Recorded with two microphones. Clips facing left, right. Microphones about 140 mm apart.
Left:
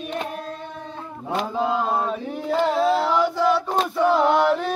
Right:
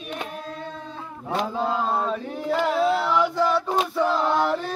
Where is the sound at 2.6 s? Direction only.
30° left (ahead or behind).